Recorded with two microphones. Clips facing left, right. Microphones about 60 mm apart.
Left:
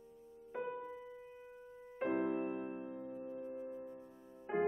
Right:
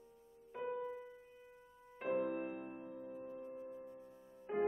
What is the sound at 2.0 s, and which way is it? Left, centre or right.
Music, left.